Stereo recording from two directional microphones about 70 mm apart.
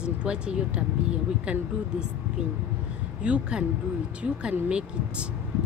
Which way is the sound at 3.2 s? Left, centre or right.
Centre.